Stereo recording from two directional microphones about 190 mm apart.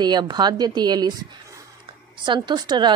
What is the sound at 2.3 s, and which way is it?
Speech, 25° right (ahead or behind).